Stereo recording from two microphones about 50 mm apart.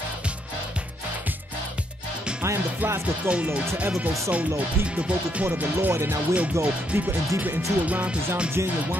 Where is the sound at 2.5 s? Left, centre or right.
Right.